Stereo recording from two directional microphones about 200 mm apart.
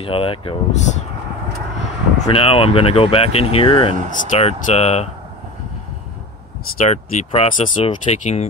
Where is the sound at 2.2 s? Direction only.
30° left (ahead or behind).